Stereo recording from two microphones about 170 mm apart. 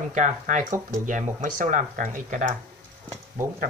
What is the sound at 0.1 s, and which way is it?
Speech, 50° right (ahead or behind).